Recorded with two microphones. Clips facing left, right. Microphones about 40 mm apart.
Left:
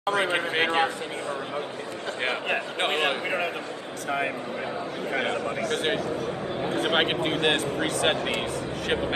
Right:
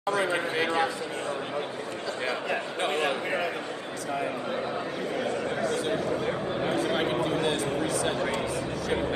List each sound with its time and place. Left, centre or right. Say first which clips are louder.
0.0 s speech: left 2 dB; left
2.2 s speech: left 3 dB; left
5.1 s speech: left 3 dB; left